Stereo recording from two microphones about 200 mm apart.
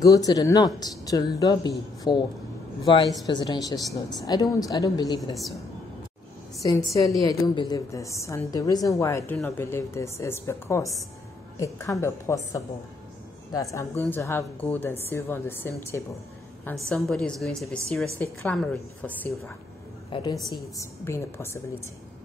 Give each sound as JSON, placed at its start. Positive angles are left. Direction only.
{"t": 0.0, "sound": "a woman's voice", "side_deg": 20}
{"t": 5.3, "sound": "a woman's voice", "side_deg": 0}
{"t": 6.9, "sound": "a woman's voice", "side_deg": 15}
{"t": 13.7, "sound": "a woman's voice", "side_deg": 15}
{"t": 20.1, "sound": "a woman's voice", "side_deg": 20}